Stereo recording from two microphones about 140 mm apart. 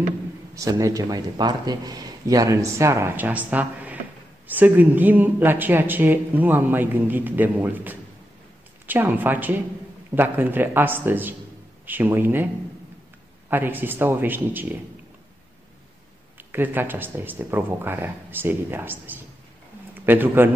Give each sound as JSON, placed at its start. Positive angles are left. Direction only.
{"t": 0.6, "sound": "speech", "side_deg": -25}
{"t": 13.5, "sound": "speech", "side_deg": -15}
{"t": 16.5, "sound": "a man's voice", "side_deg": -15}